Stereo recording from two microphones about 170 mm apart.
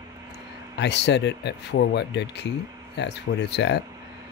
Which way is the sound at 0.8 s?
90° left.